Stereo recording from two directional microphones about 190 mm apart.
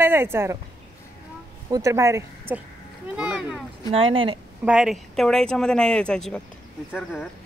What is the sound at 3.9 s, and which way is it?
Speech, 30° right (ahead or behind).